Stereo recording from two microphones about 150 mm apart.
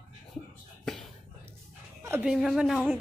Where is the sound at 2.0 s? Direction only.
15° right (ahead or behind).